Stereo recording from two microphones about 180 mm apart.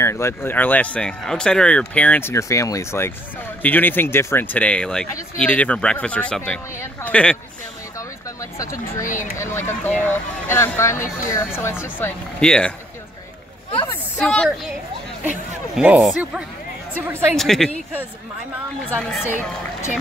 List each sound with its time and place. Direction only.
0.0 s speech: 15° left (ahead or behind)
8.4 s speech: 15° left (ahead or behind)
14.1 s speech: 5° left (ahead or behind)
15.7 s speech: 5° right (ahead or behind)
18.9 s speech: 10° left (ahead or behind)